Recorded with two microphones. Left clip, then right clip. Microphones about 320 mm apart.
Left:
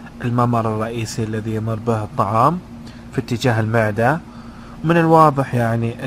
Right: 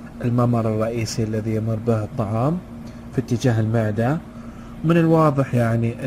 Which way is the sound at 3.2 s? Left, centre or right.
Centre.